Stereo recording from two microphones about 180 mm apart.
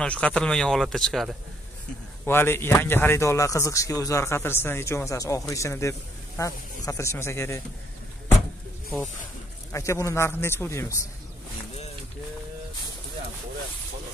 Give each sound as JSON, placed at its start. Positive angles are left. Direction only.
{"t": 0.0, "sound": "speech", "side_deg": 5}
{"t": 2.2, "sound": "speech", "side_deg": 10}
{"t": 9.7, "sound": "speech", "side_deg": 15}